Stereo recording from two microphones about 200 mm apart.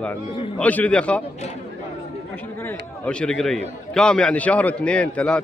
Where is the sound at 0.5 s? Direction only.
5° left (ahead or behind).